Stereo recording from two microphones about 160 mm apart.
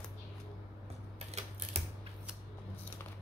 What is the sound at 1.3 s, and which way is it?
Typing, 40° right (ahead or behind).